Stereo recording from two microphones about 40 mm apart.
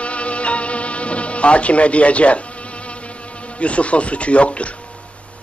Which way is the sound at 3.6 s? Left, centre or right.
Left.